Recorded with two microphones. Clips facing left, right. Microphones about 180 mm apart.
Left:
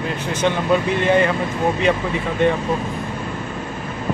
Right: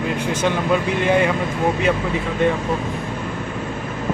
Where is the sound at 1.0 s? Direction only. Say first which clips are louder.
Even; 10° right (ahead or behind).